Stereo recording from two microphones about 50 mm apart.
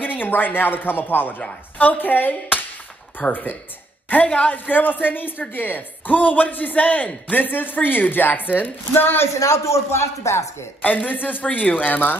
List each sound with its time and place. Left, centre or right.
0.0 s a woman's voice: left
4.3 s speech: left
4.6 s a woman's voice: left
9.3 s speech: left
10.8 s a woman's voice: left